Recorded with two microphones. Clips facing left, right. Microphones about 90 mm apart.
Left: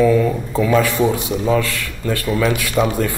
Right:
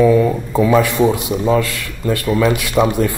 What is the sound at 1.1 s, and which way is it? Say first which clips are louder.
Speech: right 2 dB; 20° right (ahead or behind).